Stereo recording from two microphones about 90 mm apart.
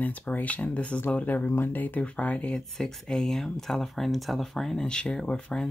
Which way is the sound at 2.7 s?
5° left (ahead or behind).